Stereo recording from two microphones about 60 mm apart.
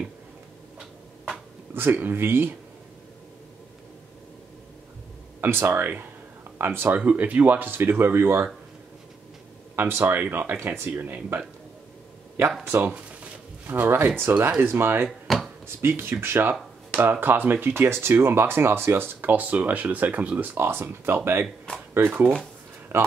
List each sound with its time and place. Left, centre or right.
1.8 s speech: right
5.4 s speech: right
7.0 s speech: right
9.8 s speech: right
12.7 s speech: right
13.7 s speech: right
15.0 s a sound: centre
15.6 s speech: right
16.9 s speech: right
22.9 s speech: right